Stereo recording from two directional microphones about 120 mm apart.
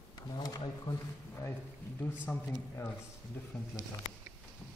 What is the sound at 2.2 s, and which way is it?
Speech, 15° left (ahead or behind).